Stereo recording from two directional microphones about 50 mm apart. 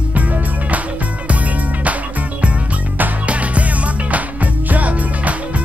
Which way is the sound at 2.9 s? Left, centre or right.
Right.